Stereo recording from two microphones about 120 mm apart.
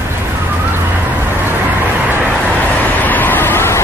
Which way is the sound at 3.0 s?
15° left (ahead or behind).